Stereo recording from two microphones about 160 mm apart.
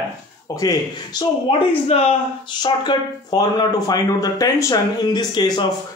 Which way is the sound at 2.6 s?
25° left (ahead or behind).